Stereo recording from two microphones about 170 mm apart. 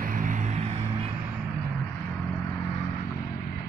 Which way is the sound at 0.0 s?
50° right (ahead or behind).